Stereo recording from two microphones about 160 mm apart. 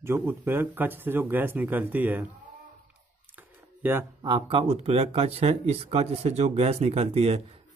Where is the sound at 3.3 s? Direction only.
15° right (ahead or behind).